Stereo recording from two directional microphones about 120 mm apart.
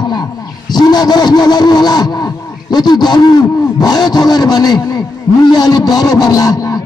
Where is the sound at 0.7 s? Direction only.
35° left (ahead or behind).